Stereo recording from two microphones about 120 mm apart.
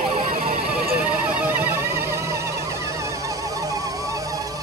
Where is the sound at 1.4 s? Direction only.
20° right (ahead or behind).